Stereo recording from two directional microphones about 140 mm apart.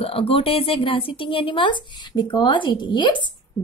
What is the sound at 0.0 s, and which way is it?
A woman's voice, 45° left (ahead or behind).